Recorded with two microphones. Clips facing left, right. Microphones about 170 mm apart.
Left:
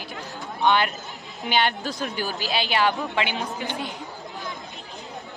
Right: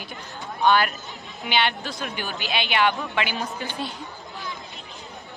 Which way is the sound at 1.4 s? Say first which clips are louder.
Left 1 dB; 45° left (ahead or behind).